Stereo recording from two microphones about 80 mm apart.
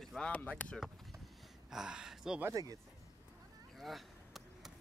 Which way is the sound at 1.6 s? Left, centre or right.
Centre.